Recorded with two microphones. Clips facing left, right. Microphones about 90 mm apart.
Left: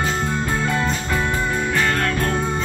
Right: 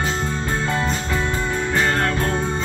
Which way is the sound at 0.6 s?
25° right (ahead or behind).